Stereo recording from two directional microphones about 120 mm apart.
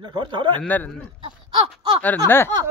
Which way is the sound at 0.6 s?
15° left (ahead or behind).